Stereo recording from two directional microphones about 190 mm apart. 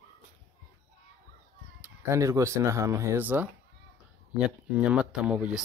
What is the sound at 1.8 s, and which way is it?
Speech, 15° right (ahead or behind).